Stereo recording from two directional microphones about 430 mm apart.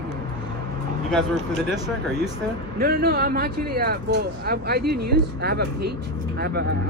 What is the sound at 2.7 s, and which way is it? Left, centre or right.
Speech, right.